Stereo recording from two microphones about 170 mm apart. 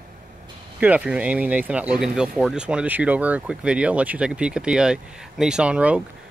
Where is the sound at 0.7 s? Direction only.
10° right (ahead or behind).